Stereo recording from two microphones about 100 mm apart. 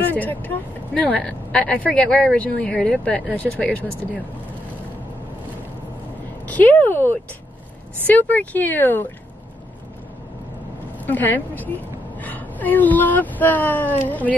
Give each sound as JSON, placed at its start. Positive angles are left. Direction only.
{"t": 0.0, "sound": "speech", "side_deg": 15}
{"t": 6.4, "sound": "speech", "side_deg": 15}
{"t": 11.1, "sound": "a woman's voice", "side_deg": 20}